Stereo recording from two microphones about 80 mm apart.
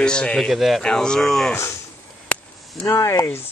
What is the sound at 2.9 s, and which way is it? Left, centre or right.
Speech, left.